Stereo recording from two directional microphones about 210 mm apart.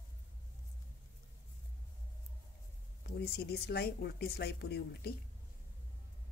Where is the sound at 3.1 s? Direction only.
50° left (ahead or behind).